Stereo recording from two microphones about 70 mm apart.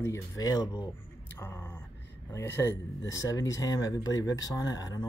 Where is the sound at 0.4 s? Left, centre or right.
Left.